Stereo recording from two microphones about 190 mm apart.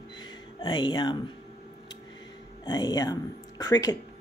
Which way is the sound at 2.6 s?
20° left (ahead or behind).